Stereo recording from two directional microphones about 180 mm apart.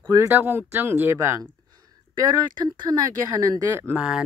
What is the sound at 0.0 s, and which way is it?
Speech, 15° right (ahead or behind).